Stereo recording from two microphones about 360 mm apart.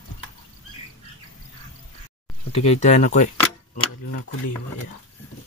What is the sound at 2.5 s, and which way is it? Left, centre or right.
Speech, centre.